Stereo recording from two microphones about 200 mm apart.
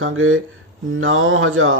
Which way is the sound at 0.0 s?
90° right.